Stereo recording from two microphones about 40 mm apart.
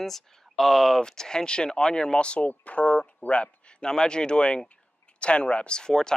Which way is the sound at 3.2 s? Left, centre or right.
Left.